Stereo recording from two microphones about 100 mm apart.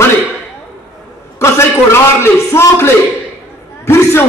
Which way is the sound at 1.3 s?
30° left (ahead or behind).